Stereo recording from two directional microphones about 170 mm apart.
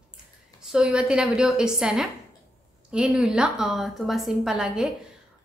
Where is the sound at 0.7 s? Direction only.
5° right (ahead or behind).